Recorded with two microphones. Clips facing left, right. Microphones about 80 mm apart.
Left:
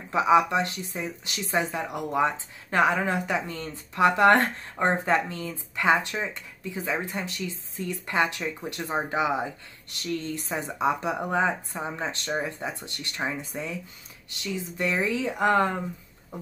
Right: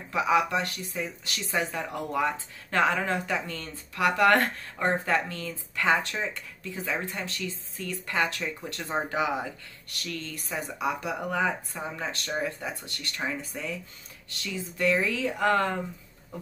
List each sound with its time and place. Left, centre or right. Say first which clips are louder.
0.1 s speech: left 4 dB; left